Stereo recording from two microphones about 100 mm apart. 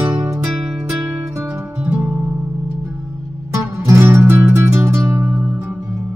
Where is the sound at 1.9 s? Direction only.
15° right (ahead or behind).